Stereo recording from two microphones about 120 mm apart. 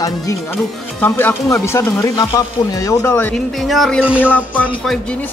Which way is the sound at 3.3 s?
Centre (ahead or behind).